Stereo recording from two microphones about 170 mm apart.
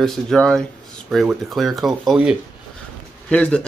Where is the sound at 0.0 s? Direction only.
Centre (ahead or behind).